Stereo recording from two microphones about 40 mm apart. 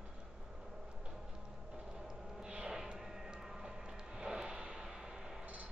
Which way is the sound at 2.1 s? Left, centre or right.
Centre.